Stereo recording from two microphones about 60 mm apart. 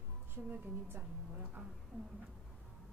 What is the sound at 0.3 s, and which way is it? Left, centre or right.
Speech, right.